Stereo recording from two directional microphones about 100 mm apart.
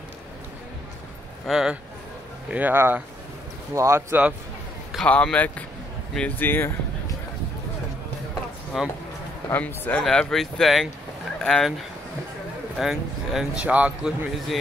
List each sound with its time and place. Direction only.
1.5 s speech: 5° right (ahead or behind)
2.5 s speech: 20° right (ahead or behind)
5.0 s a man's voice: 10° left (ahead or behind)
8.7 s speech: 5° right (ahead or behind)
9.5 s a man's voice: 15° left (ahead or behind)
10.0 s a man's voice: 5° left (ahead or behind)
12.7 s speech: 5° right (ahead or behind)